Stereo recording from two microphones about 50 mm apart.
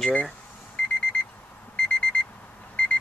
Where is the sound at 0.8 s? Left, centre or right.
Left.